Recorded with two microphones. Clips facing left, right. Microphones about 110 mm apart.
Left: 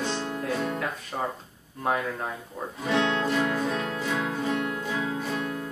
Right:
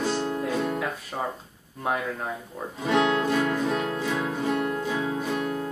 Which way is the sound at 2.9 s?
15° right (ahead or behind).